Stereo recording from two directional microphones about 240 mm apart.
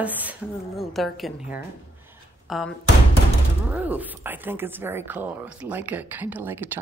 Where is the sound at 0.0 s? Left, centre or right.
Centre.